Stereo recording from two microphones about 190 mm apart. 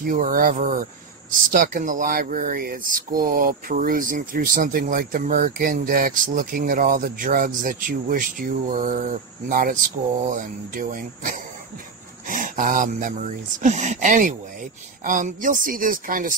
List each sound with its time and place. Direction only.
0.0 s speech: 45° right (ahead or behind)